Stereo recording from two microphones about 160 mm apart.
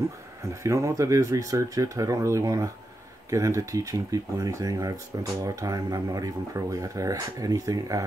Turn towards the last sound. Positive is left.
turn(degrees=-20)  # may be behind; listen again after turning